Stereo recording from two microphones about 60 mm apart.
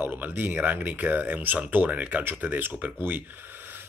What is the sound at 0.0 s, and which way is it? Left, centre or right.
Speech, right.